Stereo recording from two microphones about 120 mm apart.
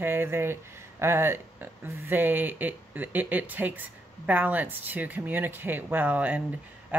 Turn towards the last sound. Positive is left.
turn(degrees=-10)  # may be behind; listen again after turning